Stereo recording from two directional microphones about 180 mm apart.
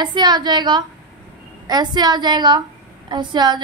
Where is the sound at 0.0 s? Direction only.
25° right (ahead or behind).